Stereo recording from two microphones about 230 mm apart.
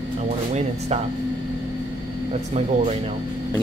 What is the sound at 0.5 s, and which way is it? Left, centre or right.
Speech, right.